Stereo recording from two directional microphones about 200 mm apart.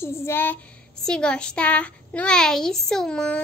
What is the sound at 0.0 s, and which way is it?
Child singing, 10° left (ahead or behind).